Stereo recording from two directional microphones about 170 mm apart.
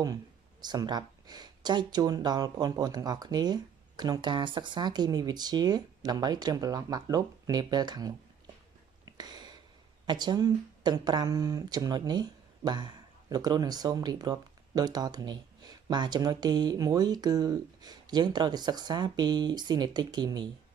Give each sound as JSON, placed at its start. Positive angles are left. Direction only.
{"t": 0.0, "sound": "speech", "side_deg": -25}
{"t": 9.1, "sound": "a sound", "side_deg": -25}
{"t": 10.0, "sound": "speech", "side_deg": -25}